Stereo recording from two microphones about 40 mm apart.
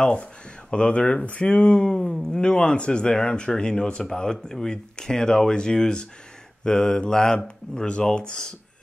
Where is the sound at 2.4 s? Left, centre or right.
Left.